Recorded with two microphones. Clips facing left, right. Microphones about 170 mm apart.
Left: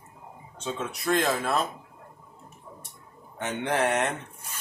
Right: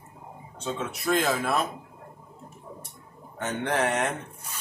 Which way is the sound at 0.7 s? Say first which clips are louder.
Even; centre (ahead or behind).